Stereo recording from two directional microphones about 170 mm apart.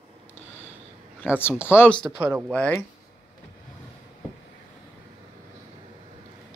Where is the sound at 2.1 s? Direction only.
5° right (ahead or behind).